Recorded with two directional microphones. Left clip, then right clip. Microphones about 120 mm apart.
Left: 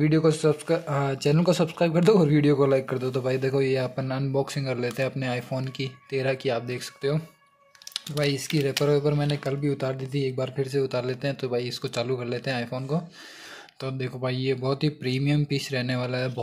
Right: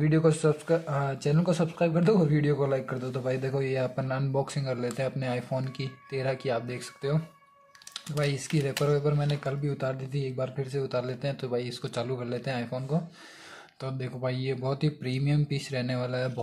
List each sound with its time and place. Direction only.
0.0 s speech: 20° left (ahead or behind)